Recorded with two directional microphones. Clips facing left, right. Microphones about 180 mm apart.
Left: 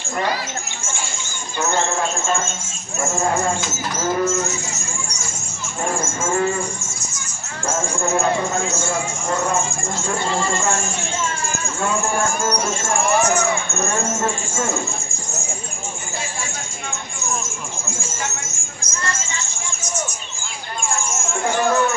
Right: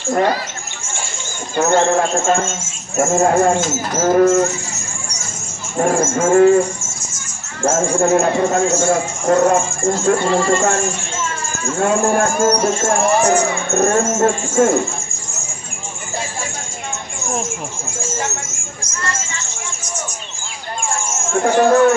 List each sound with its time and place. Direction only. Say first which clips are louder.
1.6 s speech: right 7 dB; 45° right (ahead or behind)
5.8 s speech: right 8 dB; 45° right (ahead or behind)
7.6 s speech: right 8 dB; 45° right (ahead or behind)
11.8 s speech: right 6 dB; 45° right (ahead or behind)
21.4 s speech: right 7 dB; 40° right (ahead or behind)